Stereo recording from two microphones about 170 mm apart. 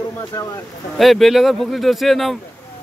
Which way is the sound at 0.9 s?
Centre (ahead or behind).